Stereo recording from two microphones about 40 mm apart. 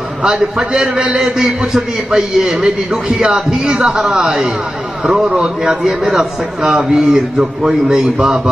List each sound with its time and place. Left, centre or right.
0.2 s a man's voice: centre
5.9 s a man's voice: centre